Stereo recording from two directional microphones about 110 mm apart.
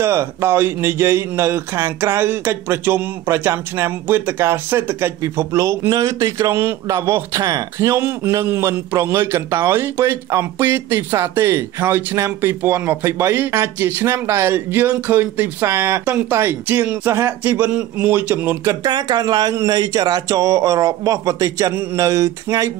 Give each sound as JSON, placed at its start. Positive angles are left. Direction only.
{"t": 0.0, "sound": "a man's voice", "side_deg": -25}
{"t": 18.9, "sound": "speech", "side_deg": -40}